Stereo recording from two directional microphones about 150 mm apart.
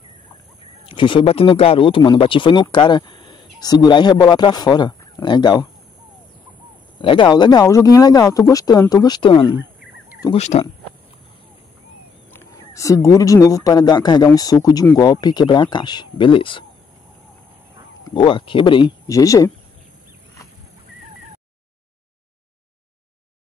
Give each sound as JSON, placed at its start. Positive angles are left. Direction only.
{"t": 0.8, "sound": "speech", "side_deg": 35}
{"t": 7.0, "sound": "speech", "side_deg": 35}
{"t": 10.3, "sound": "speech", "side_deg": 50}
{"t": 12.3, "sound": "speech", "side_deg": 20}
{"t": 18.1, "sound": "speech", "side_deg": 35}